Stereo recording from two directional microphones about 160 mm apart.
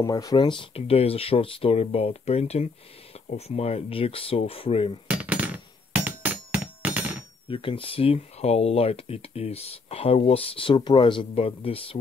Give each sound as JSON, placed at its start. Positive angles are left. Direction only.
{"t": 0.0, "sound": "speech", "side_deg": 20}
{"t": 5.0, "sound": "a sound", "side_deg": -10}
{"t": 7.4, "sound": "speech", "side_deg": 35}